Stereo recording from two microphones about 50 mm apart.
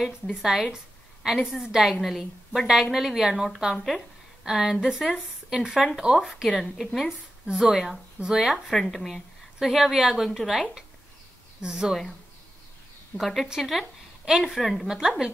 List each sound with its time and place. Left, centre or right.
0.0 s a woman's voice: centre
3.7 s a woman's voice: centre
6.1 s a woman's voice: centre
7.0 s speech: centre
8.6 s a woman's voice: centre
11.6 s speech: centre
13.2 s a woman's voice: centre
14.9 s speech: centre